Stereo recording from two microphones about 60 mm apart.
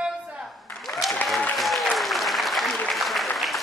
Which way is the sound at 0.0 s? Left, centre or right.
Centre.